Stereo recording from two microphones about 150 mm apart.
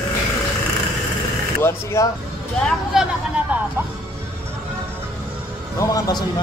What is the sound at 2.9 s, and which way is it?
Speech, 5° right (ahead or behind).